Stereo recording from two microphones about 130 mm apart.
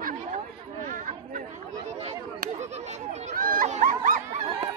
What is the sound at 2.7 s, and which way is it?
Chatter, 60° right (ahead or behind).